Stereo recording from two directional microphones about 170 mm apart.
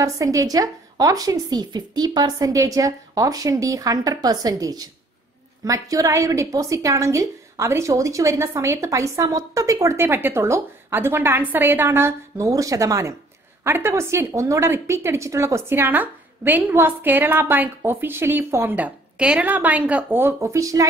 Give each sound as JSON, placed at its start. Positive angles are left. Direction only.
{"t": 0.0, "sound": "a woman's voice", "side_deg": -20}